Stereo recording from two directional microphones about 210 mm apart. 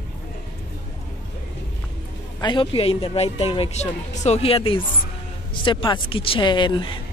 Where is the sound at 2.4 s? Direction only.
25° left (ahead or behind).